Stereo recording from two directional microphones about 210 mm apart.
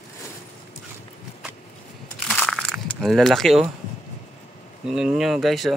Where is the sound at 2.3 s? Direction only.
5° left (ahead or behind).